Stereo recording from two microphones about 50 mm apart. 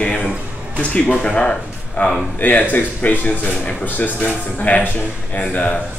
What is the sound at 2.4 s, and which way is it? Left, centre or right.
Speech, left.